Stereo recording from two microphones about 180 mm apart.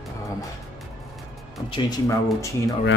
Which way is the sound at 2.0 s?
15° left (ahead or behind).